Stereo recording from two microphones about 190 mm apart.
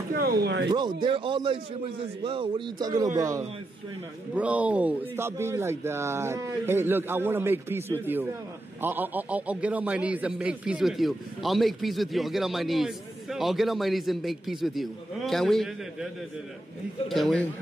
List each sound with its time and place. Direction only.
0.1 s speech: 55° right (ahead or behind)
0.7 s speech: 25° right (ahead or behind); by 16.1 s centre (ahead or behind)
17.1 s speech: 5° left (ahead or behind)